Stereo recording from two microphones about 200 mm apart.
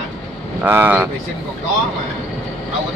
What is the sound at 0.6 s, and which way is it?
Speech, 10° right (ahead or behind).